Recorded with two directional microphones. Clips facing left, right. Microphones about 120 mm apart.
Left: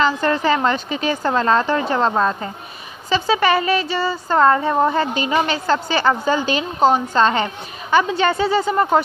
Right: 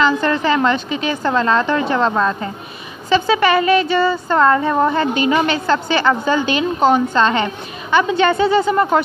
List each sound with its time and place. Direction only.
0.0 s a woman's voice: 40° left (ahead or behind)